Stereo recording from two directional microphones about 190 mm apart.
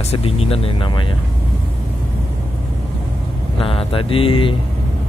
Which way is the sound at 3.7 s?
30° left (ahead or behind).